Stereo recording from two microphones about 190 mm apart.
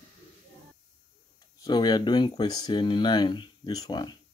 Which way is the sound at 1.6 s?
25° left (ahead or behind).